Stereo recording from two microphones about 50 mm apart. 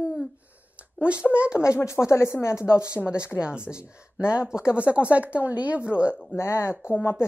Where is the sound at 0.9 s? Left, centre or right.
Right.